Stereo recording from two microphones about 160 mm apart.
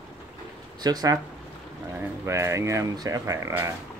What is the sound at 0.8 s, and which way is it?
Speech, 25° right (ahead or behind).